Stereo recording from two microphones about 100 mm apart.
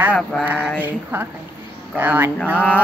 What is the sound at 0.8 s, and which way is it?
Speech, 20° right (ahead or behind).